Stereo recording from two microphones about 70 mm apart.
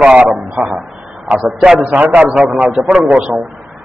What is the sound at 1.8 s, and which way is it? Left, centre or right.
Speech, right.